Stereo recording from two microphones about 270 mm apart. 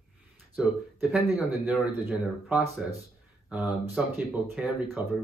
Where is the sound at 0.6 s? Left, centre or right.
Centre.